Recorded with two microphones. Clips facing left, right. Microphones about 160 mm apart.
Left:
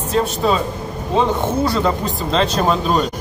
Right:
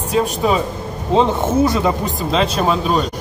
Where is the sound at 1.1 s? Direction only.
20° right (ahead or behind); by 3.1 s centre (ahead or behind).